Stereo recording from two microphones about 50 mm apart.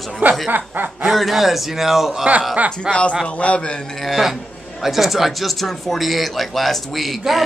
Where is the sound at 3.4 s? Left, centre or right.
Left.